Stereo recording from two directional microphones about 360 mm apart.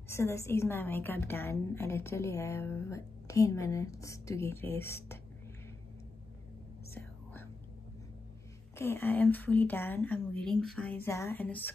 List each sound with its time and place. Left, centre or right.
0.1 s a woman's voice: centre
6.9 s whispering: centre
8.7 s a woman's voice: centre